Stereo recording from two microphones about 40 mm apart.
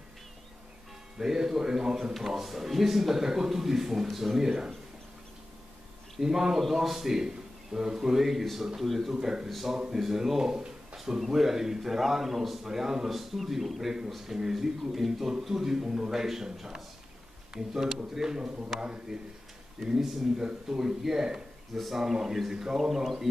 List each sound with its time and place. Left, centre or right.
1.1 s a man's voice: centre
6.2 s a man's voice: centre
9.1 s a man's voice: centre
9.5 s a man's voice: centre
21.7 s a man's voice: centre
22.0 s a man's voice: centre